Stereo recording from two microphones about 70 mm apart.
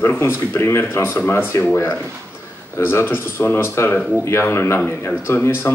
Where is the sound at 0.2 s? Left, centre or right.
Left.